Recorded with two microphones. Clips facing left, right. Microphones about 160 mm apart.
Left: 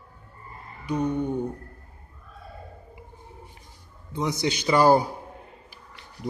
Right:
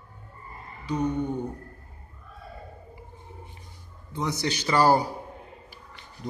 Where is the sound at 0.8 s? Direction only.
10° left (ahead or behind).